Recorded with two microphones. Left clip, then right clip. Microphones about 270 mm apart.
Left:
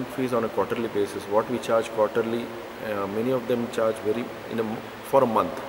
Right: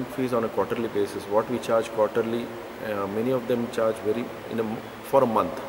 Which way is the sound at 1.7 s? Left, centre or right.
Centre.